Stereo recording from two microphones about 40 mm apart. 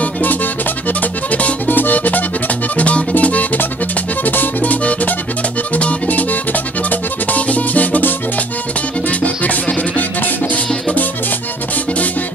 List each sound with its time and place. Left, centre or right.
0.0 s music: left
1.7 s music: left
9.2 s music: left